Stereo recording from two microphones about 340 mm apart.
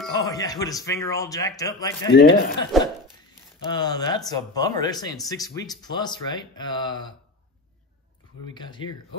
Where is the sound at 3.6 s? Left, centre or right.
Centre.